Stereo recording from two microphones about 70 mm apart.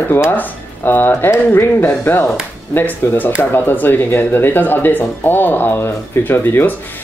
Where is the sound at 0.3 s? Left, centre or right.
Left.